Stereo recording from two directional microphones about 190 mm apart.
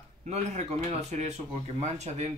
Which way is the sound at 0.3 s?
35° right (ahead or behind).